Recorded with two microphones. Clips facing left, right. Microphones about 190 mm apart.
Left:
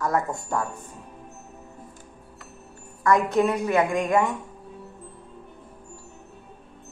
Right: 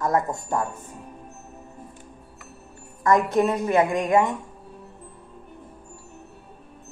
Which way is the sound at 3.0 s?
20° right (ahead or behind).